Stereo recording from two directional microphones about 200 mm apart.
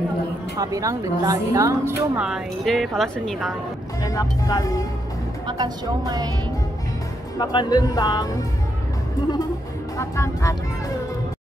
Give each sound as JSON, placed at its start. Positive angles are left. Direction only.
{"t": 0.6, "sound": "speech", "side_deg": -15}
{"t": 4.0, "sound": "speech", "side_deg": 15}
{"t": 5.5, "sound": "speech", "side_deg": -20}
{"t": 7.3, "sound": "speech", "side_deg": 20}
{"t": 9.9, "sound": "speech", "side_deg": 15}